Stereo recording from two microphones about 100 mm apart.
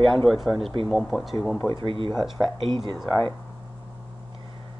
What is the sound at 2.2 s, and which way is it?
Speech, centre (ahead or behind).